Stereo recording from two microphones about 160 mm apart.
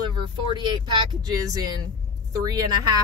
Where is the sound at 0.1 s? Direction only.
30° right (ahead or behind).